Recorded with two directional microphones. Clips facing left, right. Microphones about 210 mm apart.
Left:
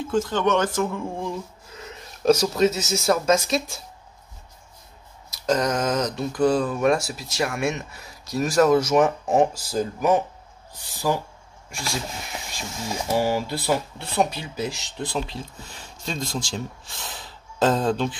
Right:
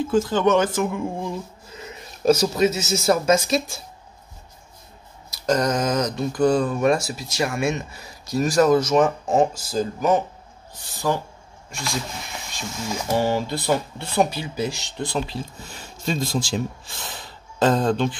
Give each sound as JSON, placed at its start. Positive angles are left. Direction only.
{"t": 0.1, "sound": "speech", "side_deg": -5}
{"t": 5.3, "sound": "speech", "side_deg": 0}
{"t": 13.1, "sound": "speech", "side_deg": 5}